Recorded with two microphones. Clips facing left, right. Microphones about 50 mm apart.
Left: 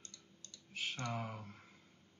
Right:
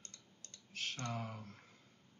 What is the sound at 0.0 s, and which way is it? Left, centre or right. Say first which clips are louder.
Typing: left 1 dB; right.